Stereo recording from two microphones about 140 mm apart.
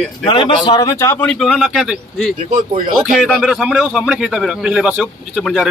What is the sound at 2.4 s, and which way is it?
Speech, 90° right.